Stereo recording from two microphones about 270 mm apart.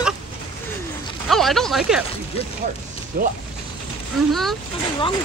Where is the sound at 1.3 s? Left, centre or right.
Centre.